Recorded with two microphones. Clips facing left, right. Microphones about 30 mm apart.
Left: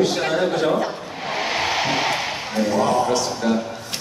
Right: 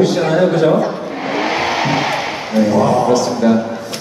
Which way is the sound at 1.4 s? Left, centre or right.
Centre.